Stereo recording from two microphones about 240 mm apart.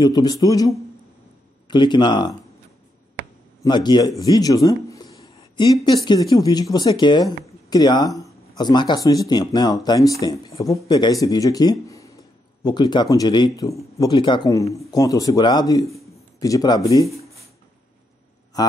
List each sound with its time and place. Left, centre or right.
0.0 s speech: centre
3.6 s speech: centre
4.2 s a sound: centre
6.0 s speech: centre
18.6 s speech: centre